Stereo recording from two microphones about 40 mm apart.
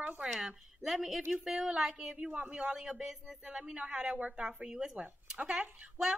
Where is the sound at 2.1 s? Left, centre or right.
Right.